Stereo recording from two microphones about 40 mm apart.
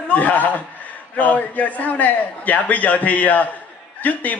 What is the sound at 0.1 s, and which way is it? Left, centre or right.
A man's voice, left.